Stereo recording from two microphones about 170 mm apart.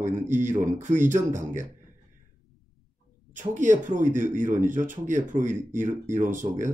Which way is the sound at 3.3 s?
50° right (ahead or behind).